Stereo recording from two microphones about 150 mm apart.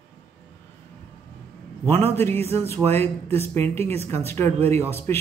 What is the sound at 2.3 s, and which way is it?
Speech, 45° right (ahead or behind).